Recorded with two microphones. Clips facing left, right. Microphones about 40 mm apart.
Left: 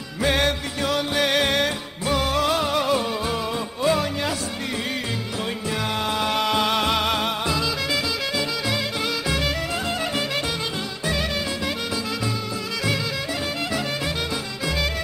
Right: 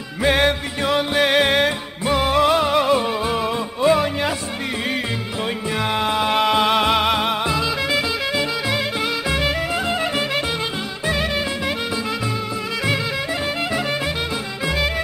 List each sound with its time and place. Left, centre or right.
0.2 s music: centre
5.9 s music: centre